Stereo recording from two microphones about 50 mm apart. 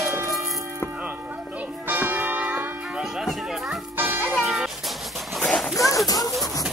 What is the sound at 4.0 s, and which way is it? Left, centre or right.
Music, right.